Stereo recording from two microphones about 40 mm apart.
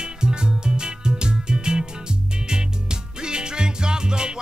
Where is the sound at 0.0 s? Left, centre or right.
Centre.